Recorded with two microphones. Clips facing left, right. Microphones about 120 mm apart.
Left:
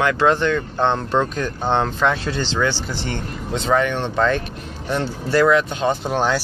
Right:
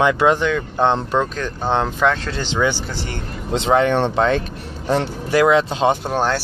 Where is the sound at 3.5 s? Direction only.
25° right (ahead or behind).